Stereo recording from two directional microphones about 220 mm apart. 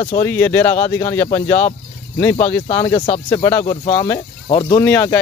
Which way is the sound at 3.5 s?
20° left (ahead or behind).